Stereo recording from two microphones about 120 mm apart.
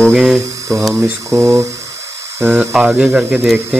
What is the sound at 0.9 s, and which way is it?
Speech, 25° right (ahead or behind).